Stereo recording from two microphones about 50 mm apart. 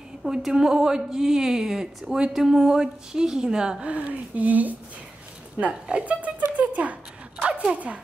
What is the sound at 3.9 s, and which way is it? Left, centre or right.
Speech, right.